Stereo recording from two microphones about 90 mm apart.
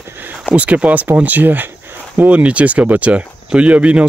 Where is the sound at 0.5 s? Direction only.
15° right (ahead or behind).